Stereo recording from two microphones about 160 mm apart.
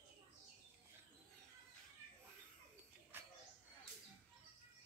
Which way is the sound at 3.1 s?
15° right (ahead or behind).